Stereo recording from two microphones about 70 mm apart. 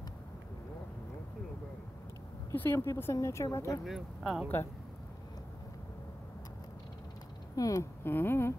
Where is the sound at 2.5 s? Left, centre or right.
Left.